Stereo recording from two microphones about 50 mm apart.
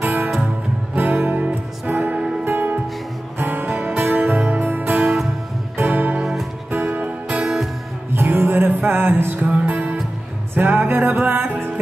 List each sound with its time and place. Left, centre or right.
0.0 s music: right
5.0 s music: centre
5.8 s music: right
8.1 s music: right
9.4 s music: right